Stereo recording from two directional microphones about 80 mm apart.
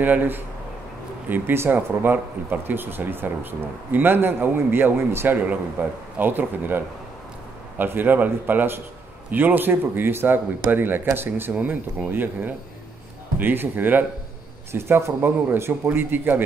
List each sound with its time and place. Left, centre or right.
0.0 s speech: right
7.8 s speech: right